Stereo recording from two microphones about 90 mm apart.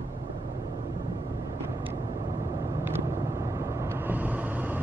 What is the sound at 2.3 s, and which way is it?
Vehicle, 35° right (ahead or behind).